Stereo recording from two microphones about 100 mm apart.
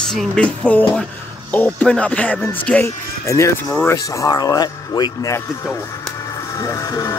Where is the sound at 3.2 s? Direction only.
30° left (ahead or behind).